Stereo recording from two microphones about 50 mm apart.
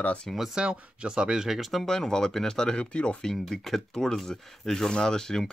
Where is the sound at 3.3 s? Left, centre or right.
Centre.